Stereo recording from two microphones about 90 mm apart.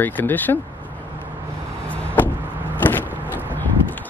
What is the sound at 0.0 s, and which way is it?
Speech, 20° left (ahead or behind).